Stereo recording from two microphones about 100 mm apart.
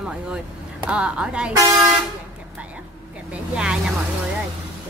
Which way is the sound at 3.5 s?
10° right (ahead or behind).